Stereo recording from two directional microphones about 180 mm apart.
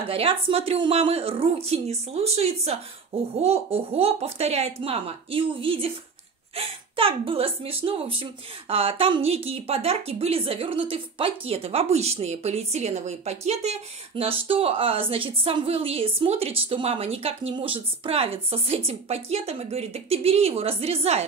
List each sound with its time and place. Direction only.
0.1 s speech: 30° right (ahead or behind)